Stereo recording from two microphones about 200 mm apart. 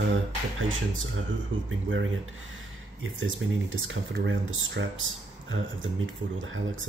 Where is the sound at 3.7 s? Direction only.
70° right (ahead or behind).